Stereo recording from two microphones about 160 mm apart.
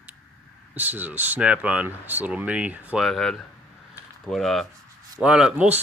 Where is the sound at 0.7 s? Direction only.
10° right (ahead or behind).